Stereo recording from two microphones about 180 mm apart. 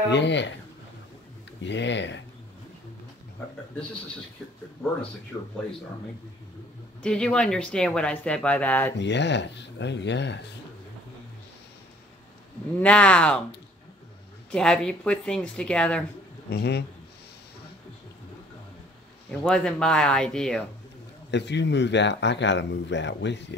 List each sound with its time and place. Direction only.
0.1 s speech: 75° left (ahead or behind)
1.6 s speech: 80° left
5.3 s speech: 15° left (ahead or behind)
7.0 s speech: 5° left (ahead or behind)
8.9 s speech: 75° left (ahead or behind)
12.8 s speech: 5° left (ahead or behind)
14.5 s speech: 5° left (ahead or behind)
16.4 s speech: 65° left (ahead or behind)
19.4 s speech: 5° left (ahead or behind)
21.3 s speech: 75° left (ahead or behind)